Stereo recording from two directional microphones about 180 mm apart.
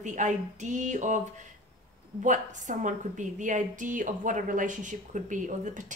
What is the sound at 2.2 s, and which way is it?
A woman's voice, 45° right (ahead or behind).